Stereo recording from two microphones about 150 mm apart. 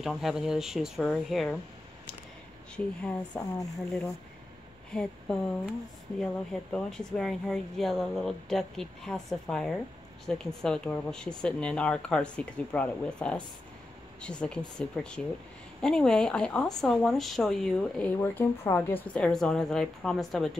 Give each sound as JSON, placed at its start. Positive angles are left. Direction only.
{"t": 0.0, "sound": "speech", "side_deg": 0}
{"t": 2.7, "sound": "speech", "side_deg": 5}
{"t": 4.9, "sound": "speech", "side_deg": 5}
{"t": 6.1, "sound": "speech", "side_deg": 5}